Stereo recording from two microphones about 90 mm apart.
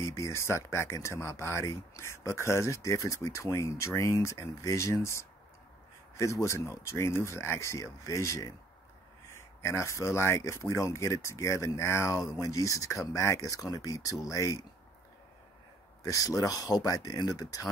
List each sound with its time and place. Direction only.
0.0 s speech: 35° left (ahead or behind)
16.0 s speech: 40° left (ahead or behind)